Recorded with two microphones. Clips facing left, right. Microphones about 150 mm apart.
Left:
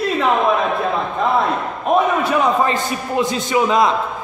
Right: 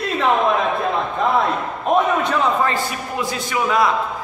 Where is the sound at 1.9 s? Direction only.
10° left (ahead or behind).